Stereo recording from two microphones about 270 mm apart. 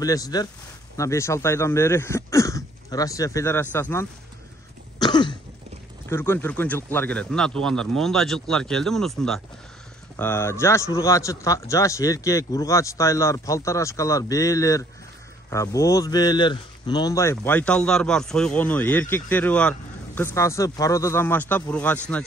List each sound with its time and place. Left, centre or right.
0.0 s speech: centre
4.9 s cough: centre
6.0 s speech: centre